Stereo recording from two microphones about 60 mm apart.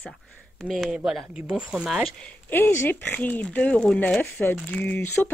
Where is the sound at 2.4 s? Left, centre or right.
Left.